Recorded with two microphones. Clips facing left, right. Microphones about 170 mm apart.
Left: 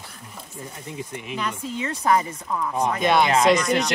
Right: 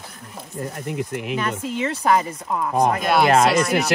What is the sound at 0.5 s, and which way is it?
Speech, 65° right (ahead or behind).